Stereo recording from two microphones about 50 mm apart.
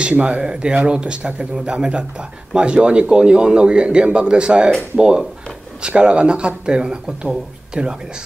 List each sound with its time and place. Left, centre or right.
0.1 s speech: right